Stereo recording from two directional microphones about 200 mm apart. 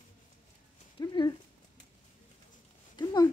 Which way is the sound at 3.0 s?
20° left (ahead or behind).